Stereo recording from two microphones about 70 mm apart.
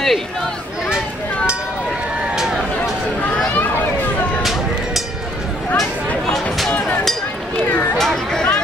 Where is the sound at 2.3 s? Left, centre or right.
Centre.